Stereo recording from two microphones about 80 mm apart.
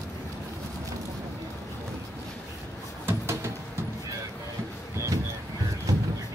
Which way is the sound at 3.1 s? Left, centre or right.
Right.